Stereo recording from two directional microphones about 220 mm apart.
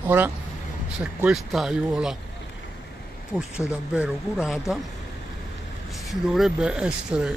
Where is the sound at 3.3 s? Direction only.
5° right (ahead or behind).